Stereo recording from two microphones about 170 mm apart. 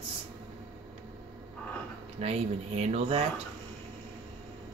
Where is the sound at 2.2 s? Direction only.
35° right (ahead or behind).